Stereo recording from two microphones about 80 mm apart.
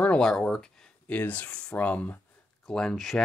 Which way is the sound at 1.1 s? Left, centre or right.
Centre.